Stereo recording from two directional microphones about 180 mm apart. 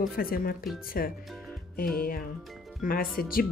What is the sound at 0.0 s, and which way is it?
Speech, 55° left (ahead or behind).